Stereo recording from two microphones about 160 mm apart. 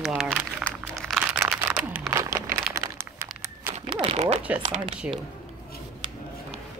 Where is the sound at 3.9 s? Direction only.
30° right (ahead or behind).